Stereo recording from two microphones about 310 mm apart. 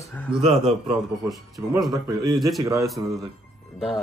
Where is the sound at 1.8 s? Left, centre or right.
Centre.